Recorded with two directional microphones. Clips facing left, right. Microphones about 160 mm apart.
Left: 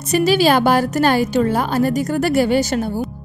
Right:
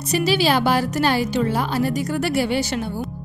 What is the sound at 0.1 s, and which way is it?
Speech, 50° left (ahead or behind).